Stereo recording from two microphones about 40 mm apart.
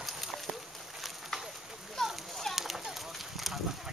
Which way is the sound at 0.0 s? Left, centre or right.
Centre.